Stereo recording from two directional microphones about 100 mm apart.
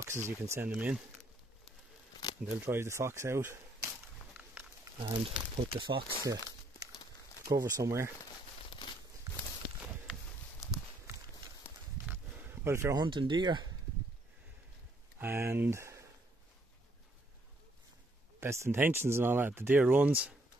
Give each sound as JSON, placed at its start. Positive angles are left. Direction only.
{"t": 0.0, "sound": "speech", "side_deg": -25}
{"t": 0.7, "sound": "speech", "side_deg": -10}
{"t": 2.5, "sound": "speech", "side_deg": -25}
{"t": 4.9, "sound": "speech", "side_deg": -70}
{"t": 6.2, "sound": "speech", "side_deg": -40}
{"t": 7.5, "sound": "speech", "side_deg": -30}
{"t": 8.6, "sound": "crumpling", "side_deg": 50}
{"t": 9.3, "sound": "walk", "side_deg": -35}
{"t": 10.1, "sound": "a sound", "side_deg": -10}
{"t": 12.1, "sound": "roaring cats", "side_deg": -20}
{"t": 12.9, "sound": "speech", "side_deg": -50}
{"t": 15.1, "sound": "speech", "side_deg": -25}
{"t": 18.4, "sound": "speech", "side_deg": -25}